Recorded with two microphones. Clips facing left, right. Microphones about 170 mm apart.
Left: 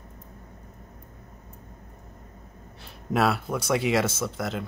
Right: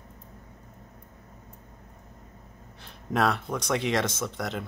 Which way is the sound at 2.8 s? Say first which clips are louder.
Left 2 dB; 5° left (ahead or behind).